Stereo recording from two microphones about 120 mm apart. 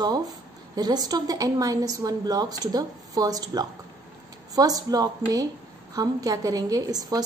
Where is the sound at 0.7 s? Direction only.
35° right (ahead or behind).